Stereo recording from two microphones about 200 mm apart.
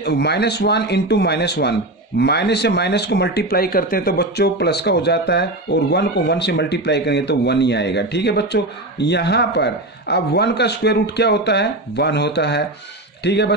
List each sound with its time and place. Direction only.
0.0 s speech: 55° left (ahead or behind)